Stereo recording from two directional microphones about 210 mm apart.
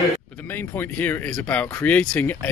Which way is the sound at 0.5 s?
10° left (ahead or behind).